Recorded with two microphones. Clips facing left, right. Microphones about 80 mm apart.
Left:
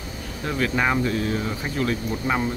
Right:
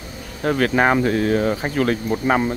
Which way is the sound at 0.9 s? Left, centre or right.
Right.